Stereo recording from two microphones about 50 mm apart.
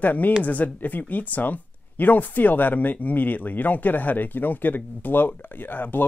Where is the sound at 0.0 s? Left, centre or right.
Left.